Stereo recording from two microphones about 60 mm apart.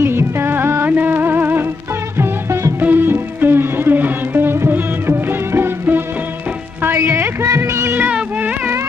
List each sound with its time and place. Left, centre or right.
0.0 s music: right
0.8 s music: right
2.8 s music: right
7.4 s music: right